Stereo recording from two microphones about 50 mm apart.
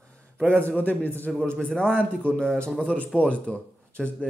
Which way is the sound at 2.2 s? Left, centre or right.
Left.